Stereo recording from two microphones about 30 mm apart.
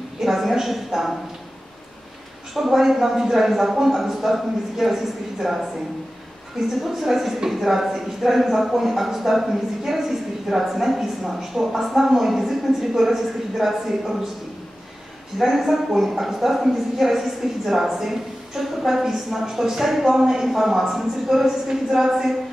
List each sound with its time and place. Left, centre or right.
0.2 s a woman's voice: centre
2.5 s speech: centre
6.9 s speech: centre
15.3 s speech: centre
19.4 s speech: centre